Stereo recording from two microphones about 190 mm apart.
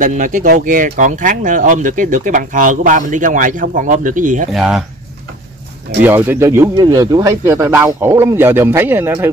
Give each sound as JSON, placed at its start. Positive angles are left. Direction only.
{"t": 0.0, "sound": "speech", "side_deg": -45}
{"t": 4.5, "sound": "speech", "side_deg": -5}
{"t": 6.0, "sound": "speech", "side_deg": -10}